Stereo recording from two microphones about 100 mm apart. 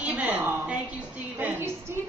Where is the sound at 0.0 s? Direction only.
15° right (ahead or behind).